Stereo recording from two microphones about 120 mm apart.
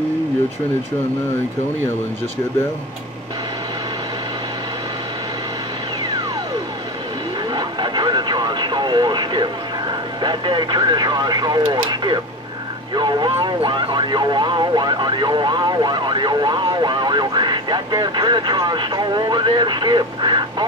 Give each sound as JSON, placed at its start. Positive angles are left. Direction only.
{"t": 7.5, "sound": "vehicle", "side_deg": -40}
{"t": 10.2, "sound": "speech", "side_deg": -40}